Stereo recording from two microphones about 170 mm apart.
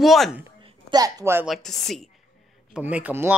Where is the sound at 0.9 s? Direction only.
20° right (ahead or behind).